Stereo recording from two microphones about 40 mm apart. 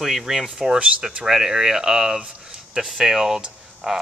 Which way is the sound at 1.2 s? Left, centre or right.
Centre.